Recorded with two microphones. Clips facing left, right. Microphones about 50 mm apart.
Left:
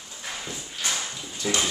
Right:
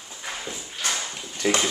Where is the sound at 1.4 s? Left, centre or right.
Right.